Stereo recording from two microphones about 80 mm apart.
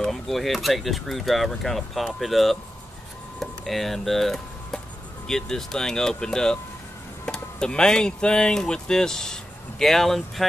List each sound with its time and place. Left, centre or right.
0.0 s speech: centre